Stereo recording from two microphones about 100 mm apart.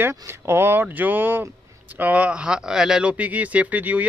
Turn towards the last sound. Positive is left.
turn(degrees=-15)  # may be behind; listen again after turning